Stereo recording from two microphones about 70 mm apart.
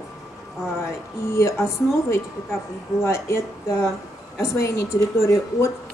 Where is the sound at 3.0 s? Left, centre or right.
Left.